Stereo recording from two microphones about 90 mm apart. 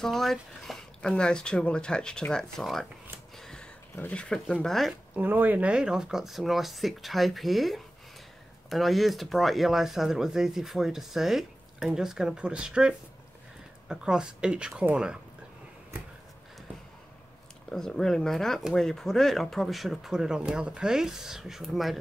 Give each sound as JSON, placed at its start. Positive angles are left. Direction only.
{"t": 0.0, "sound": "speech", "side_deg": 5}
{"t": 3.3, "sound": "a sound", "side_deg": 5}
{"t": 3.9, "sound": "speech", "side_deg": 20}
{"t": 4.2, "sound": "speech", "side_deg": 10}
{"t": 5.1, "sound": "speech", "side_deg": -20}
{"t": 17.6, "sound": "speech", "side_deg": 5}